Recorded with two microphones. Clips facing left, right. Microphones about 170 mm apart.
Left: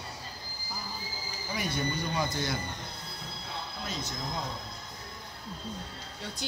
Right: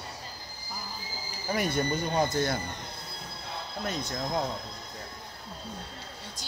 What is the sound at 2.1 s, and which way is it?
Speech, 50° right (ahead or behind).